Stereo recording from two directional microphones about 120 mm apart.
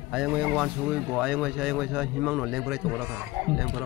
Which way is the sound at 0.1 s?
5° right (ahead or behind).